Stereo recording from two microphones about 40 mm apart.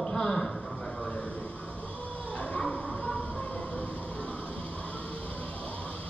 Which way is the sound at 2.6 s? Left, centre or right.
Left.